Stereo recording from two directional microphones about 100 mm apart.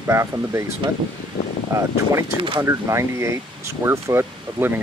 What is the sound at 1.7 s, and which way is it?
Speech, 30° right (ahead or behind).